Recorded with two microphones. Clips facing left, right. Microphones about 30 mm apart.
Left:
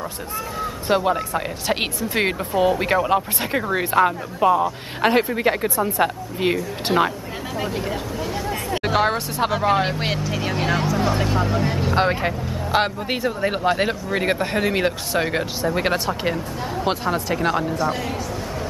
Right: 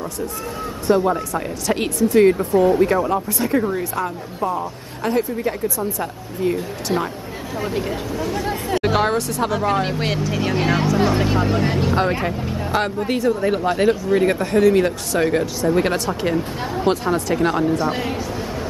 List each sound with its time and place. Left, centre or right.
0.8 s speech: left
1.1 s speech: left
7.6 s speech: centre
9.1 s speech: centre
12.1 s speech: centre
12.7 s speech: left; by 17.7 s centre
17.7 s speech: centre